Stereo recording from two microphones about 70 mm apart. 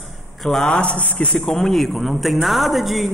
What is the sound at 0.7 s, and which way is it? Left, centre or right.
Speech, centre.